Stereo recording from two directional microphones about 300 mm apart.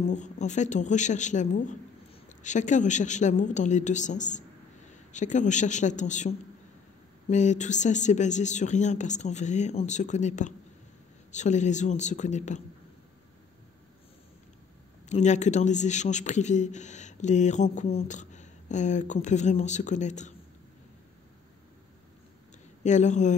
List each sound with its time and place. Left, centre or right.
0.1 s a man's voice: left
15.0 s a man's voice: left
22.8 s a man's voice: left